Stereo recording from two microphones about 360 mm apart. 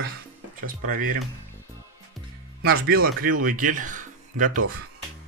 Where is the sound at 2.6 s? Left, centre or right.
Right.